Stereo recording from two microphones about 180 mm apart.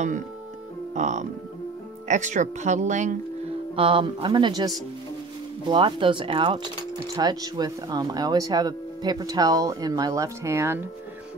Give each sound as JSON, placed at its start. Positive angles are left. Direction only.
{"t": 0.9, "sound": "speech", "side_deg": -40}
{"t": 3.7, "sound": "speech", "side_deg": -30}